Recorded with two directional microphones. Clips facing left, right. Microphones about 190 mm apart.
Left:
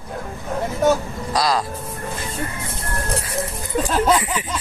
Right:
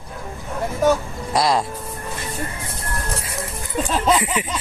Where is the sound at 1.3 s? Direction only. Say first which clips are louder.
Right 2 dB; 25° right (ahead or behind).